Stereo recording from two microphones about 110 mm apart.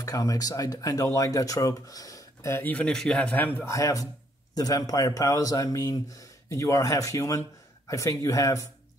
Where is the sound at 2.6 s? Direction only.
10° left (ahead or behind).